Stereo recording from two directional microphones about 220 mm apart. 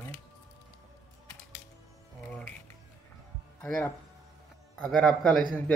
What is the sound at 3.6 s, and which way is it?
Speech, 5° left (ahead or behind).